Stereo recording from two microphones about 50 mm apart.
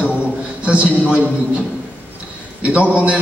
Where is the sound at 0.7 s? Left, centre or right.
Right.